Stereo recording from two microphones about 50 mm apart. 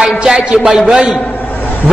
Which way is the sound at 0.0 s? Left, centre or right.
Centre.